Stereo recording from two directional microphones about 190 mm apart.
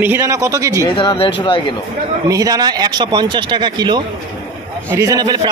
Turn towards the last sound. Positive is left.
turn(degrees=-20)  # may be behind; listen again after turning